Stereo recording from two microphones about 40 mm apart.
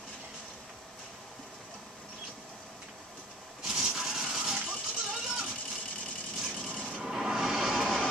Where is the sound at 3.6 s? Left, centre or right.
Centre.